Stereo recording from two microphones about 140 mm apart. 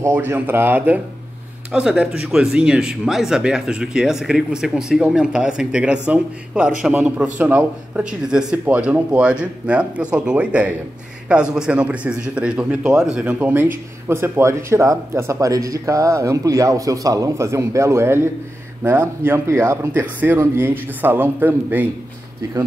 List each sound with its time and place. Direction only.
0.0 s a man's voice: 15° right (ahead or behind)